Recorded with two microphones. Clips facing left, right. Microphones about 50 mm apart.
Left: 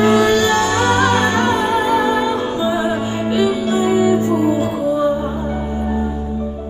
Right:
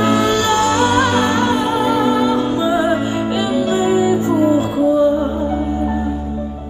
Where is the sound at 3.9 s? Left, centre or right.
Left.